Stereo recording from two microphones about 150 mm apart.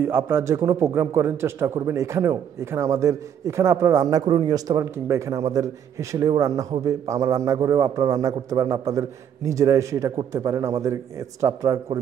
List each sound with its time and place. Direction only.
0.0 s a man's voice: 15° right (ahead or behind)